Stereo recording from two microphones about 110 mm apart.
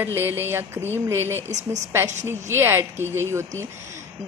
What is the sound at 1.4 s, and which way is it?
Speech, 90° right.